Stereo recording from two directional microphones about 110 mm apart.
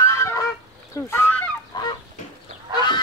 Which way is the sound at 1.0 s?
20° left (ahead or behind).